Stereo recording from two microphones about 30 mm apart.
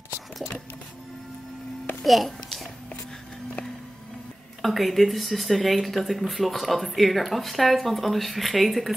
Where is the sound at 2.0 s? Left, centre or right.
Centre.